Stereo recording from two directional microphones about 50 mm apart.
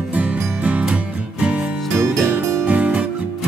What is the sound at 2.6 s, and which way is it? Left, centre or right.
Music, right.